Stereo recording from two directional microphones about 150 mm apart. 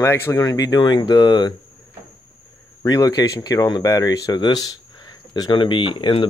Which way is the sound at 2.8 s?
25° left (ahead or behind).